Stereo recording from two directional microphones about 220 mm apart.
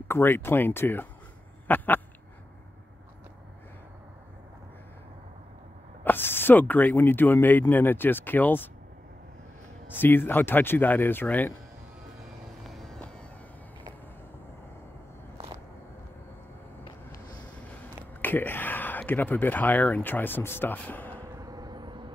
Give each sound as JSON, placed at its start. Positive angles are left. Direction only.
{"t": 0.1, "sound": "speech", "side_deg": 10}
{"t": 6.0, "sound": "speech", "side_deg": 10}
{"t": 9.8, "sound": "speech", "side_deg": 10}
{"t": 12.6, "sound": "music", "side_deg": 0}
{"t": 15.3, "sound": "a sound", "side_deg": -25}
{"t": 17.8, "sound": "speech", "side_deg": 10}
{"t": 21.4, "sound": "vehicle", "side_deg": -15}